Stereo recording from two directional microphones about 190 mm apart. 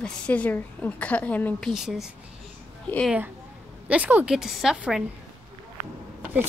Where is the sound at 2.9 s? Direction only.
10° left (ahead or behind).